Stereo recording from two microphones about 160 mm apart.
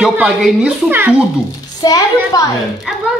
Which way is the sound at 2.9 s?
5° right (ahead or behind).